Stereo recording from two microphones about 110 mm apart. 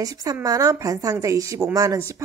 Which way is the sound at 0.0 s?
30° right (ahead or behind).